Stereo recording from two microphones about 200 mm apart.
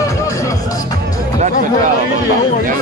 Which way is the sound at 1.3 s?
40° right (ahead or behind).